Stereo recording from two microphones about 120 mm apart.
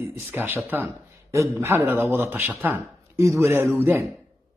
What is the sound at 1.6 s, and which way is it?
Speech, 20° right (ahead or behind).